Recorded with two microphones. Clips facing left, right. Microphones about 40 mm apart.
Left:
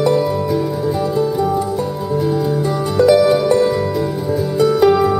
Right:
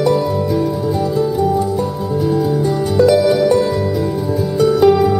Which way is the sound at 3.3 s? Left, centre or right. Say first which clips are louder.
Right 1 dB; centre.